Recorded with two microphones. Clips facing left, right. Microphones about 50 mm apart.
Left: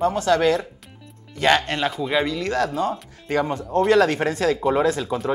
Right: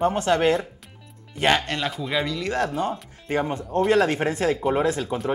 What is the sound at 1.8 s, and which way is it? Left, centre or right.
Speech, centre.